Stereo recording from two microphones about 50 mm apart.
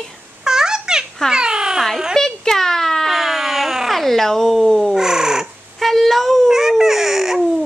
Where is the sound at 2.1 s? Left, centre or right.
Centre.